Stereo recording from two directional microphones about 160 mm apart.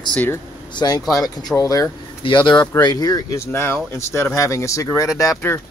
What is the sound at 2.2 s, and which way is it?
Speech, 30° left (ahead or behind).